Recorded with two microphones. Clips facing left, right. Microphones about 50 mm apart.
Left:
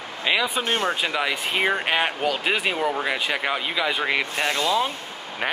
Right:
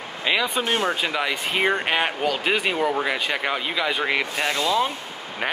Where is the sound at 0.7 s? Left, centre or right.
Centre.